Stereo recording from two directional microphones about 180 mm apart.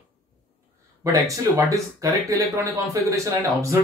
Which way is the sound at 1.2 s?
20° right (ahead or behind).